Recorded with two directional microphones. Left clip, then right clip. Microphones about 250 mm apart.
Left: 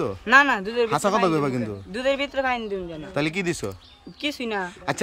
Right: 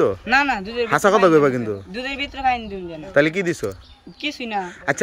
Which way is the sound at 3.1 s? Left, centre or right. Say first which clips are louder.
Right 8 dB; centre.